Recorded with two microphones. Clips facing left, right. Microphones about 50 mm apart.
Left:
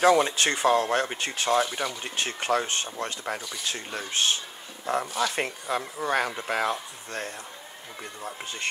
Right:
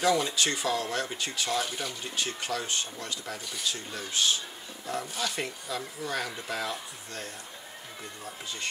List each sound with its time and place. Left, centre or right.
0.0 s speech: left